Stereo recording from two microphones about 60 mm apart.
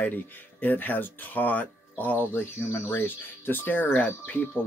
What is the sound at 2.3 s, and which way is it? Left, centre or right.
Speech, left.